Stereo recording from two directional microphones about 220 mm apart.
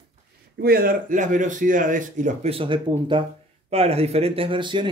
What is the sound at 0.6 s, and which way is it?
Speech, 45° right (ahead or behind).